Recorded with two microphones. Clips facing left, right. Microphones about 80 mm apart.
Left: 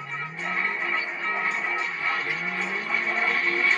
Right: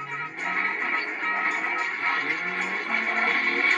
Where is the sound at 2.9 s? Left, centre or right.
Right.